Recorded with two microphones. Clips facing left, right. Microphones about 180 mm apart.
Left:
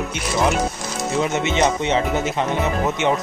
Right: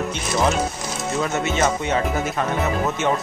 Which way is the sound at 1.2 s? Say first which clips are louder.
Left 2 dB; 20° left (ahead or behind).